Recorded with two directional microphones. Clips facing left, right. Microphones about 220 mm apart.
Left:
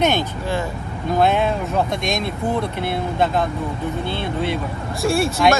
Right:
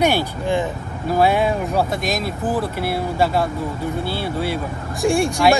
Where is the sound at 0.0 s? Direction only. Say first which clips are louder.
Right 1 dB; 10° right (ahead or behind).